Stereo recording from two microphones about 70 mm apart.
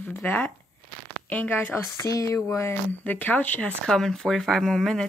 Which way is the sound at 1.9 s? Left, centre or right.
Left.